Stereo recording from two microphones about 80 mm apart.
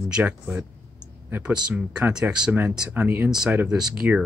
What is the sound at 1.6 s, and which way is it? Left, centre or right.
Speech, centre.